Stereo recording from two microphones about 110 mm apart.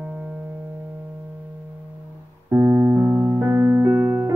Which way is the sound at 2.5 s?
25° right (ahead or behind).